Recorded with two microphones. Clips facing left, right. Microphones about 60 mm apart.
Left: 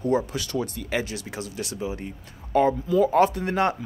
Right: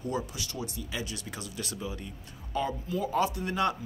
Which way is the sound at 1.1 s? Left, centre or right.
Left.